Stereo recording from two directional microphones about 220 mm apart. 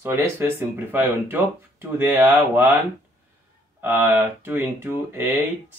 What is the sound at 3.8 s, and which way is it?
Speech, 10° right (ahead or behind).